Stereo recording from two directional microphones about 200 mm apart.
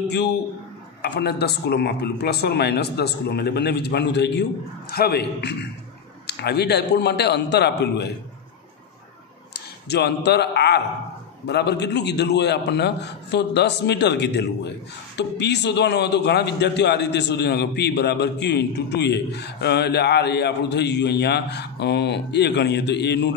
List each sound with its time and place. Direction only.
1.0 s a man's voice: 55° left (ahead or behind)
9.8 s a man's voice: 55° left (ahead or behind)